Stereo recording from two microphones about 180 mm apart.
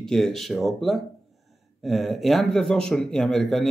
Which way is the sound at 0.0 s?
Centre (ahead or behind).